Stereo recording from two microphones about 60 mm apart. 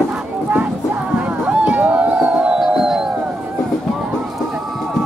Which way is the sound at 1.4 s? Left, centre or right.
Right.